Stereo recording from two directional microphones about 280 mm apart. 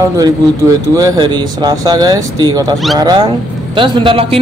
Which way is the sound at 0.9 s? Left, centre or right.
Centre.